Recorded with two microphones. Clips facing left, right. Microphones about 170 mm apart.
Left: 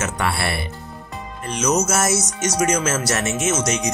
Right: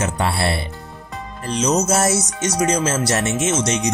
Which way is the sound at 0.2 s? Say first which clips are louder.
Even; 30° right (ahead or behind).